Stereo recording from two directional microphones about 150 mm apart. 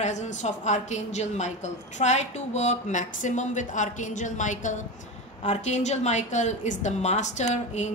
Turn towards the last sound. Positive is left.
turn(degrees=50)  # may be behind; listen again after turning